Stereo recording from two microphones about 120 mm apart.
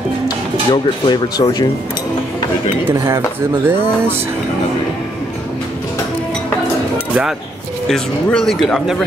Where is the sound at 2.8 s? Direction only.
20° right (ahead or behind).